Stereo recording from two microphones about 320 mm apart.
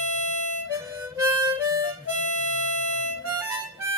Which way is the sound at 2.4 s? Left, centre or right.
Right.